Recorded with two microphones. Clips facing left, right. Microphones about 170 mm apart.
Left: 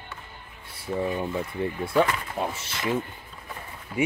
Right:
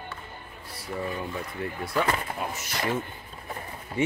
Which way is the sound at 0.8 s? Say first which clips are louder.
Left 5 dB; 20° left (ahead or behind).